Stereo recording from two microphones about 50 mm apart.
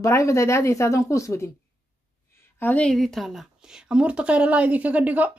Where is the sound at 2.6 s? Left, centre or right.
Left.